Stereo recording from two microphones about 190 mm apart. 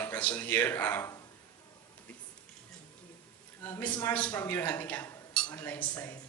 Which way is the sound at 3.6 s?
10° left (ahead or behind).